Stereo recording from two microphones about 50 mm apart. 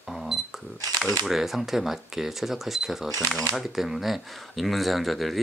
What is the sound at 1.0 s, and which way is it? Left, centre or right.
Speech, centre.